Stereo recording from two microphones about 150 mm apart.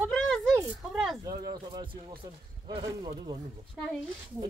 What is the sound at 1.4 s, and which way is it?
Speech, 30° right (ahead or behind).